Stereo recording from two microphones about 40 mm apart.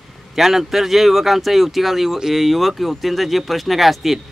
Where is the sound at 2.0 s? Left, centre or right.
Centre.